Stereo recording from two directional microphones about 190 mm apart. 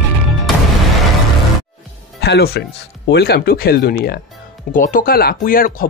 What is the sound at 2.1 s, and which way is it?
Speech, 60° left (ahead or behind).